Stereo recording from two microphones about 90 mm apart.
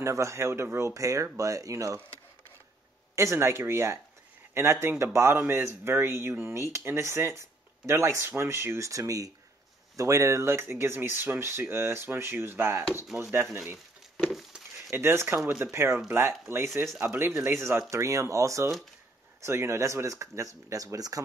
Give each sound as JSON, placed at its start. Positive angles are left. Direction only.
{"t": 0.0, "sound": "speech", "side_deg": -35}
{"t": 3.2, "sound": "speech", "side_deg": -30}
{"t": 14.9, "sound": "speech", "side_deg": -30}